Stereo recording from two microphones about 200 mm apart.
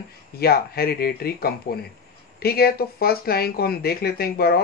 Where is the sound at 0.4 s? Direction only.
50° left (ahead or behind).